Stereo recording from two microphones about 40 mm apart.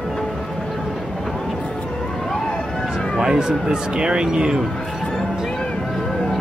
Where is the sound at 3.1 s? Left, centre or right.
Centre.